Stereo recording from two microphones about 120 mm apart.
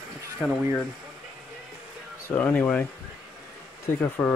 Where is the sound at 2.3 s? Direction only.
10° left (ahead or behind).